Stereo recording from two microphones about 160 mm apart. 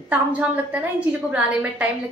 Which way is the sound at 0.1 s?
10° right (ahead or behind).